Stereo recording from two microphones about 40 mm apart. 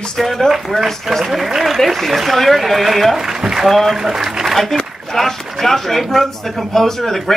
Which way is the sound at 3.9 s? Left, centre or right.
Centre.